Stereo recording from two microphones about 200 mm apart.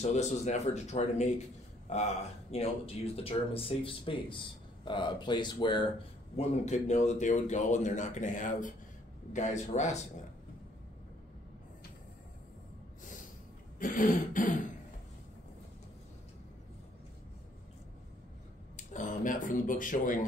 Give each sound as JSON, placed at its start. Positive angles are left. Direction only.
{"t": 0.0, "sound": "speech", "side_deg": 35}
{"t": 6.3, "sound": "speech", "side_deg": 35}
{"t": 13.7, "sound": "speech", "side_deg": 40}
{"t": 18.8, "sound": "speech", "side_deg": 40}